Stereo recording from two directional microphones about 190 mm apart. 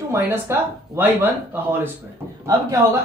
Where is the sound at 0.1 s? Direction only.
10° right (ahead or behind).